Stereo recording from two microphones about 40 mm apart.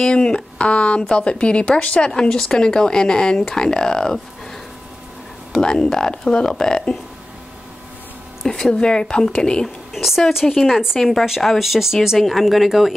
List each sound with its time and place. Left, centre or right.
0.1 s speech: left
5.6 s speech: centre
8.5 s speech: centre
9.9 s a woman's voice: centre